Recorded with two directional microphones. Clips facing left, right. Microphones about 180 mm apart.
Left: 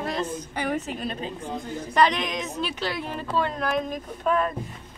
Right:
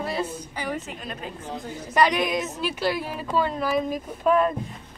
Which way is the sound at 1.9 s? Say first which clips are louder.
Right 1 dB; 10° right (ahead or behind).